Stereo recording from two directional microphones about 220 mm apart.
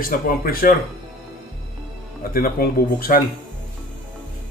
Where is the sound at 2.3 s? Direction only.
45° left (ahead or behind).